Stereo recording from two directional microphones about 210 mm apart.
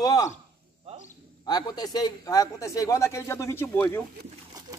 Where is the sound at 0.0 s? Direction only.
15° left (ahead or behind).